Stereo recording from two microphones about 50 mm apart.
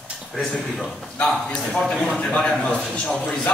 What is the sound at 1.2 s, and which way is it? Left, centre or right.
Speech, centre.